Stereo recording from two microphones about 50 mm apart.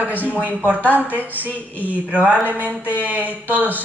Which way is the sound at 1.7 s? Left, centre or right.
Left.